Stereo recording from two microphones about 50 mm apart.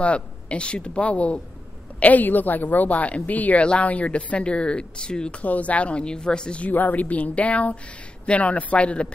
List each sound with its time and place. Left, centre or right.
0.0 s a woman's voice: left
5.4 s speech: left
6.7 s a woman's voice: left